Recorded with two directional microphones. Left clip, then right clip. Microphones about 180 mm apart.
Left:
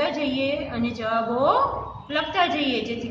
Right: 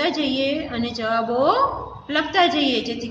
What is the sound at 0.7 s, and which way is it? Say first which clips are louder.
A woman's voice: right 2 dB; 40° right (ahead or behind).